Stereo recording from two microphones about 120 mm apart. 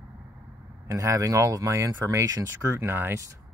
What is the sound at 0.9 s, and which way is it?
Speech, 25° right (ahead or behind).